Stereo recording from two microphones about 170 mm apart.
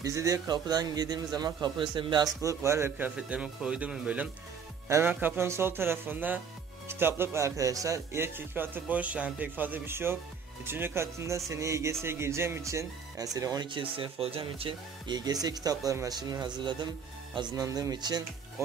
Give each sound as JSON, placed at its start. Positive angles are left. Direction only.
{"t": 0.0, "sound": "speech", "side_deg": -20}
{"t": 2.4, "sound": "speech", "side_deg": -15}